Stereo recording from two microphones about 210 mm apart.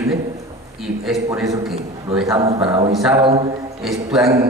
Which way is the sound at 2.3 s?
25° right (ahead or behind).